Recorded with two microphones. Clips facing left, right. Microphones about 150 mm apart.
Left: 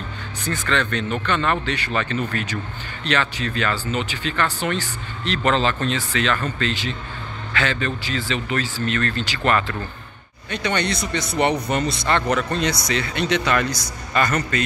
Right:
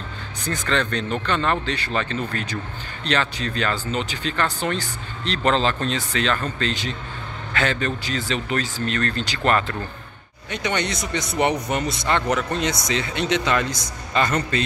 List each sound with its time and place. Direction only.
0.5 s speech: 35° right (ahead or behind)
3.0 s speech: 35° right (ahead or behind)
10.5 s speech: 15° right (ahead or behind)